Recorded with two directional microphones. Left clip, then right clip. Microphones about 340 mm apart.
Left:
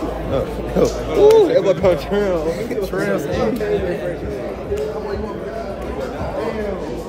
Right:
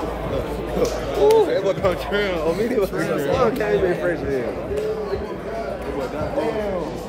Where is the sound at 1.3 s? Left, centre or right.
Left.